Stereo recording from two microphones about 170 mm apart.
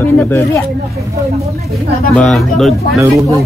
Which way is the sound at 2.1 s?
Centre (ahead or behind).